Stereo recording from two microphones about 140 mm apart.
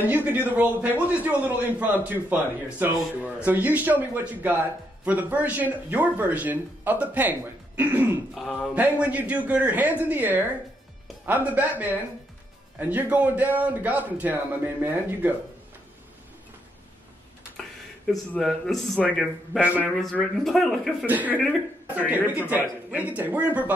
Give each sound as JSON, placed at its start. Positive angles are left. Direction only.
{"t": 0.0, "sound": "speech", "side_deg": -15}
{"t": 8.4, "sound": "a man's voice", "side_deg": 0}
{"t": 8.7, "sound": "speech", "side_deg": -10}
{"t": 18.0, "sound": "a man's voice", "side_deg": 0}
{"t": 21.0, "sound": "speech", "side_deg": -10}